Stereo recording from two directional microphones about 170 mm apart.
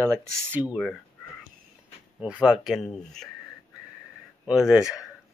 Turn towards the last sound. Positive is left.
turn(degrees=-5)  # may be behind; listen again after turning